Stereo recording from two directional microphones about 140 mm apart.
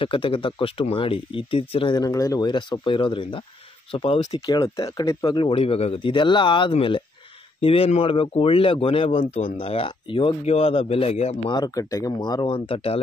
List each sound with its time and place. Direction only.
0.0 s speech: 40° left (ahead or behind)
4.5 s speech: 25° left (ahead or behind); by 11.5 s 50° left (ahead or behind)
11.5 s speech: 25° left (ahead or behind); by 13.0 s 40° left (ahead or behind)